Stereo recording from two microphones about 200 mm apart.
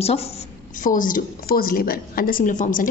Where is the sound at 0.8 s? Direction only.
40° left (ahead or behind).